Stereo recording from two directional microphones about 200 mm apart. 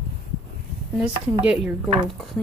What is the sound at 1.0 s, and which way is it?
Speech, 5° right (ahead or behind).